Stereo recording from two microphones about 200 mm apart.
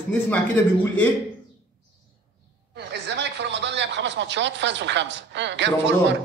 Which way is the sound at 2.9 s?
60° right (ahead or behind).